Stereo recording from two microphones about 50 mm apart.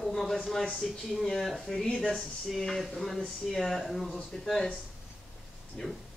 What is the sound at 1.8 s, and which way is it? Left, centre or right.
Speech, centre.